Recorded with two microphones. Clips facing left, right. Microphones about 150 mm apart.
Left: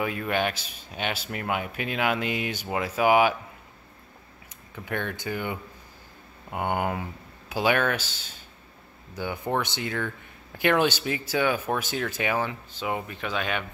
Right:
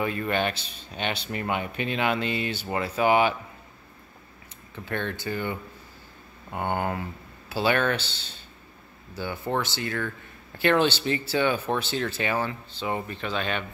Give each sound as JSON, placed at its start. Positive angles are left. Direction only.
{"t": 0.0, "sound": "speech", "side_deg": 5}
{"t": 4.7, "sound": "speech", "side_deg": 10}